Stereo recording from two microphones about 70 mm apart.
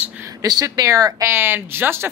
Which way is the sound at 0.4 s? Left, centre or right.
Right.